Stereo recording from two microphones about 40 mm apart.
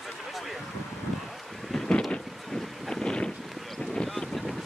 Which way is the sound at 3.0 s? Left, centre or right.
Left.